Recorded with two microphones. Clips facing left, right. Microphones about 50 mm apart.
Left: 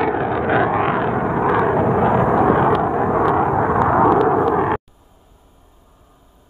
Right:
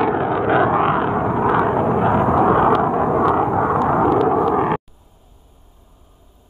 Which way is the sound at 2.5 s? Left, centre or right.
Centre.